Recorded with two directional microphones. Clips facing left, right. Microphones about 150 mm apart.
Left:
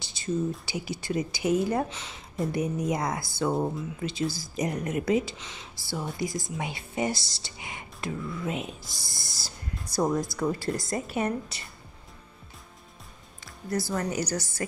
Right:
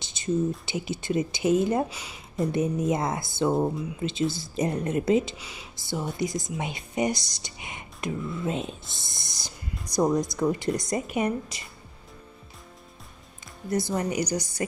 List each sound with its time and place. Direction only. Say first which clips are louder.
0.0 s a sound: right 1 dB; 20° right (ahead or behind)
0.7 s speech: right 3 dB; 20° right (ahead or behind)
1.9 s a woman's voice: even; 10° right (ahead or behind)
2.5 s speech: right 3 dB; 25° right (ahead or behind)
5.4 s a woman's voice: right 1 dB; 10° right (ahead or behind)
5.8 s a woman's voice: right 3 dB; 20° right (ahead or behind)
13.7 s a woman's voice: right 2 dB; 20° right (ahead or behind)